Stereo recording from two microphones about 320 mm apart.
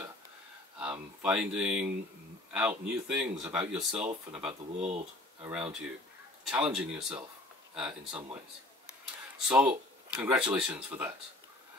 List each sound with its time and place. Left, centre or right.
0.7 s speech: centre
4.5 s speech: centre
5.4 s speech: centre
9.5 s speech: centre